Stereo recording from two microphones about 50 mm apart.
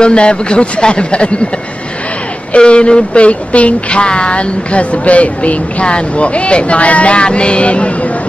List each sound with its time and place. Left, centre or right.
0.0 s speech: left
2.5 s speech: left